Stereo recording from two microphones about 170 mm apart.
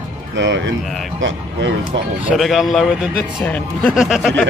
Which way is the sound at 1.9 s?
90° right.